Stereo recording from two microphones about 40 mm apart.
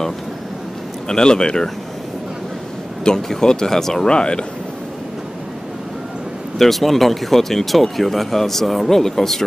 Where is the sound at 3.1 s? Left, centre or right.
Centre.